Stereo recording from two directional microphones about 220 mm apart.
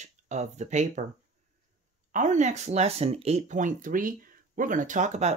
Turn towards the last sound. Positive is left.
turn(degrees=-30)  # may be behind; listen again after turning